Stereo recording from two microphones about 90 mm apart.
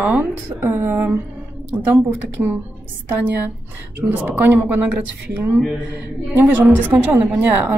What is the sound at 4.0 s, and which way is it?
Speech, 20° right (ahead or behind).